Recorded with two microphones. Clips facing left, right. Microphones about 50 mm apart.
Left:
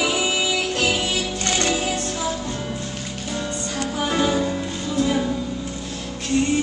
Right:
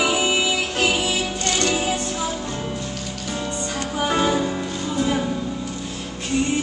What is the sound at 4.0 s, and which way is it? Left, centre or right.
Music, centre.